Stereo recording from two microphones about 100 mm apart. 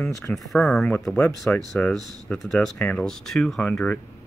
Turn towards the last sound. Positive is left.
turn(degrees=5)  # may be behind; listen again after turning